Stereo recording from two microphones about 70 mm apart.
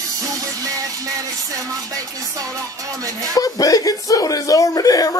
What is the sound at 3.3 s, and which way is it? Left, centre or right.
Speech, left.